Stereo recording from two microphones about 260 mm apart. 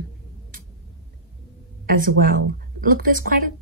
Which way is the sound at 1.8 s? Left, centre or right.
Right.